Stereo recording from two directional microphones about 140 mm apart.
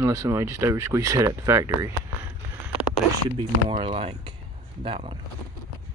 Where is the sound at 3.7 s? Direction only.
45° right (ahead or behind).